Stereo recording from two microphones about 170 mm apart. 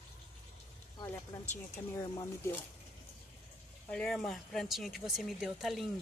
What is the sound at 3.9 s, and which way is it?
Speech, 5° left (ahead or behind).